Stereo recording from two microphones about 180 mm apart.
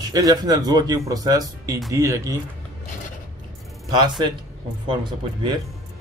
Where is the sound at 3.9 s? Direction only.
25° right (ahead or behind).